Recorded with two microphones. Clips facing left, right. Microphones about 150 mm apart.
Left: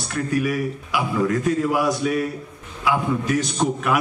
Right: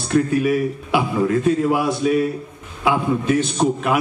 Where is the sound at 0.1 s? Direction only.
25° right (ahead or behind).